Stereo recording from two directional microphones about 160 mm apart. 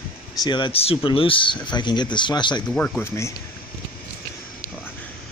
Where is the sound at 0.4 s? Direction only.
30° left (ahead or behind).